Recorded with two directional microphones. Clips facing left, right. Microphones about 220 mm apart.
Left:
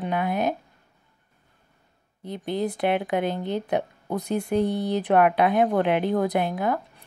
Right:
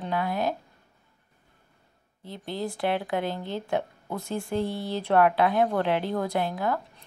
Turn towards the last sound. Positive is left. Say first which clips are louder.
# left 3 dB
turn(degrees=15)  # may be behind; listen again after turning